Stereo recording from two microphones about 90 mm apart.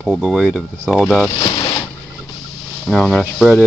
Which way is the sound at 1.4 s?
70° left (ahead or behind).